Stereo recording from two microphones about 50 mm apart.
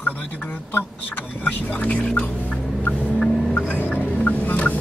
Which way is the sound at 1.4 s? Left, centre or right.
Left.